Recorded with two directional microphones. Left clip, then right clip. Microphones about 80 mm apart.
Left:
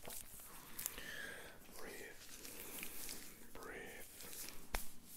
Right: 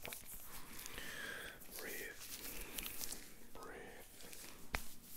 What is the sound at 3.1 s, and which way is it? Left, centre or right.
Whispering, left.